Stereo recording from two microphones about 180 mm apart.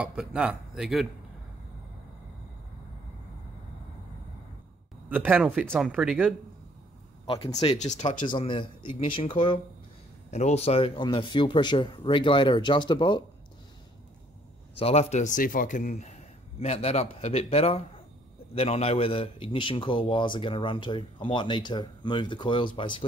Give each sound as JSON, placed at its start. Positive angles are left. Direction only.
{"t": 0.0, "sound": "speech", "side_deg": -5}
{"t": 5.1, "sound": "speech", "side_deg": -10}
{"t": 7.2, "sound": "speech", "side_deg": 30}
{"t": 8.3, "sound": "a man's voice", "side_deg": 25}
{"t": 14.8, "sound": "a man's voice", "side_deg": 35}